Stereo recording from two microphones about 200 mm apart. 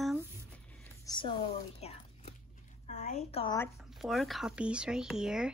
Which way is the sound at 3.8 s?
Centre (ahead or behind).